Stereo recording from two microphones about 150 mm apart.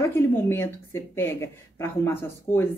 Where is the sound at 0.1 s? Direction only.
15° left (ahead or behind).